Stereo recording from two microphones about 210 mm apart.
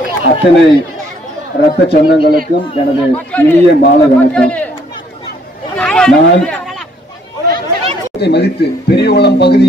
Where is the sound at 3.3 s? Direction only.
10° left (ahead or behind).